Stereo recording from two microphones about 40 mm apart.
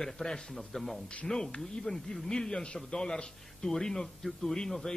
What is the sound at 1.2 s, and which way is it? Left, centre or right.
Speech, centre.